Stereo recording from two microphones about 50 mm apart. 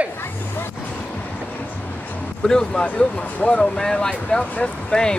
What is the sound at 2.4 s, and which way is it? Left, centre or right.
Speech, centre.